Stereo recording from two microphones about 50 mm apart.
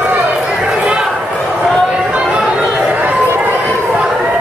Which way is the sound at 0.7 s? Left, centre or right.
Right.